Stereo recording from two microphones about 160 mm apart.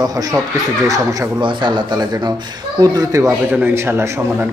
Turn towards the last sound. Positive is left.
turn(degrees=-15)  # may be behind; listen again after turning